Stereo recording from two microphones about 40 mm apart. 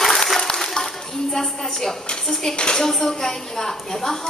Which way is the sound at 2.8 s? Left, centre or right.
Centre.